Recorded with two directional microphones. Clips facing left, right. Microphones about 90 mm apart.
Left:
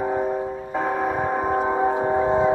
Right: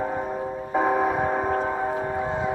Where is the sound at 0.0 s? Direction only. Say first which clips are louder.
Left 4 dB; 5° left (ahead or behind).